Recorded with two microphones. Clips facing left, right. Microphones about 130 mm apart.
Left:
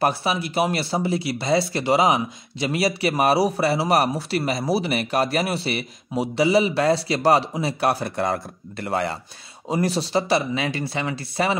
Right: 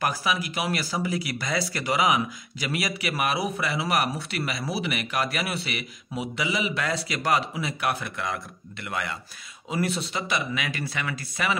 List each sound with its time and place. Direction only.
0.0 s speech: 30° left (ahead or behind)